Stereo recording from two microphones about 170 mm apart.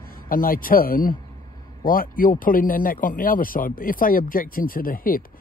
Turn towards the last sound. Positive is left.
turn(degrees=55)  # may be behind; listen again after turning